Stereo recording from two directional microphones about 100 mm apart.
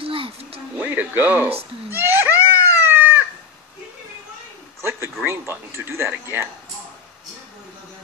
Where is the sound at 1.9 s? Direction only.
20° right (ahead or behind).